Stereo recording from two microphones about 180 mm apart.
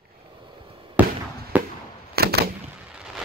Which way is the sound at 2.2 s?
60° right (ahead or behind).